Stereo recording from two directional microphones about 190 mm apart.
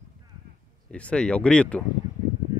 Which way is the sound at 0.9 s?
5° left (ahead or behind).